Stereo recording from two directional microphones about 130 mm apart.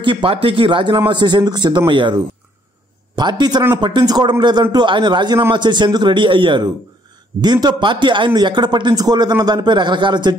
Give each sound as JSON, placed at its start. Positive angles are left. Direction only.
{"t": 0.0, "sound": "a man's voice", "side_deg": -40}